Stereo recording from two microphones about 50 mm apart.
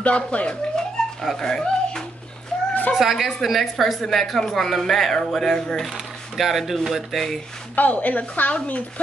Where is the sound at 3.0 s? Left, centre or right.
Centre.